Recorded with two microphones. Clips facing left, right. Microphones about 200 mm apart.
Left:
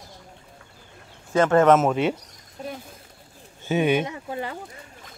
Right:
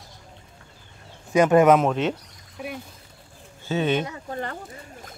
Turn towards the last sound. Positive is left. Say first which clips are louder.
# left 1 dB
turn(degrees=10)  # may be behind; listen again after turning